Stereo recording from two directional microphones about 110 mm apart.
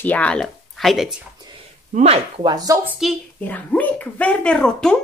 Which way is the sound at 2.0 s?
65° right (ahead or behind).